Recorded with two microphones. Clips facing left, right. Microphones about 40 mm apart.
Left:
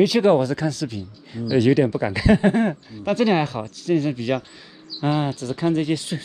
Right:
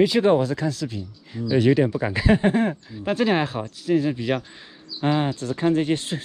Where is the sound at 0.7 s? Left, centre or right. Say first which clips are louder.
Left 1 dB; left.